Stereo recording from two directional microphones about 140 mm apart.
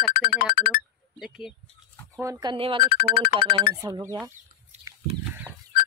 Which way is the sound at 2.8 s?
90° left.